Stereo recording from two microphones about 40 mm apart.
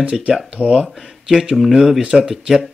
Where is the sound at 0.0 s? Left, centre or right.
Right.